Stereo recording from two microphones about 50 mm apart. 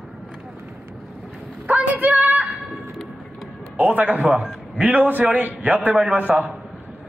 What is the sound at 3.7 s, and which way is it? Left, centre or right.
A man's voice, right.